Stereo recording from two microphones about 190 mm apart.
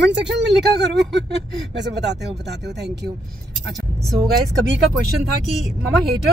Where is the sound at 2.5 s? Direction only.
60° right (ahead or behind).